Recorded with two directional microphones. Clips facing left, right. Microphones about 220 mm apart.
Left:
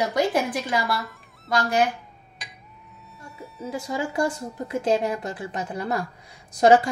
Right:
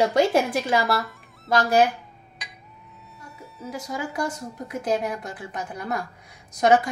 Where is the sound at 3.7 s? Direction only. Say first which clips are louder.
Left 3 dB; 25° left (ahead or behind).